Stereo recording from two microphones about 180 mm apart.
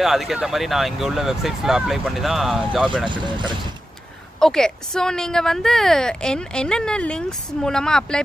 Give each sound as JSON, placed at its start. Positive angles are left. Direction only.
{"t": 0.0, "sound": "a woman's voice", "side_deg": 0}
{"t": 3.1, "sound": "speech", "side_deg": -25}
{"t": 4.4, "sound": "a woman's voice", "side_deg": 5}